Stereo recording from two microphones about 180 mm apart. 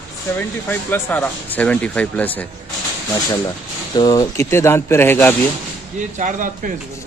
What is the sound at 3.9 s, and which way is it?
A man's voice, 20° left (ahead or behind).